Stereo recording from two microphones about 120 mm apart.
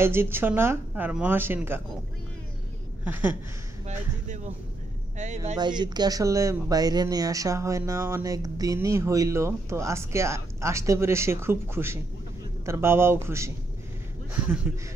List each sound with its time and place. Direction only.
0.0 s speech: 20° right (ahead or behind)
3.0 s speech: 15° right (ahead or behind)
3.8 s a man's voice: 75° right (ahead or behind)
5.6 s speech: 35° right (ahead or behind); by 13.5 s 20° right (ahead or behind)
14.3 s speech: 10° right (ahead or behind)